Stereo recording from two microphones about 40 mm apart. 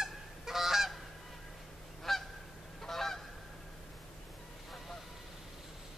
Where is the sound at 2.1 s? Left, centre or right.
Centre.